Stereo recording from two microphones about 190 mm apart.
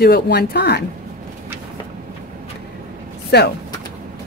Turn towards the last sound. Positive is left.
turn(degrees=60)  # may be behind; listen again after turning